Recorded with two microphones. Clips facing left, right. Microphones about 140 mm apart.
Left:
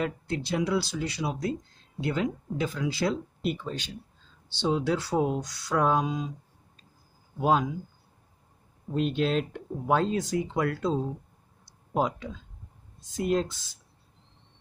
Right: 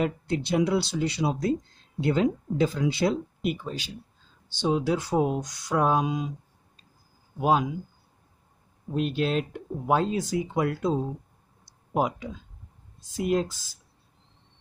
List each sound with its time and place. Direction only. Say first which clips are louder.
0.0 s speech: right 3 dB; 20° right (ahead or behind)
3.4 s speech: even; 10° right (ahead or behind)
7.3 s speech: right 1 dB; 10° right (ahead or behind)
8.9 s speech: even; 5° right (ahead or behind)
13.5 s speech: even; 40° right (ahead or behind)